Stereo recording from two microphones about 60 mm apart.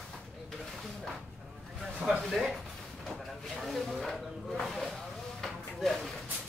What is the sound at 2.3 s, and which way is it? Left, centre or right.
Speech, centre.